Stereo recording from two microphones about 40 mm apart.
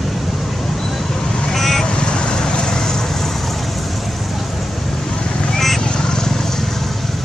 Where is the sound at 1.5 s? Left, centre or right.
Centre.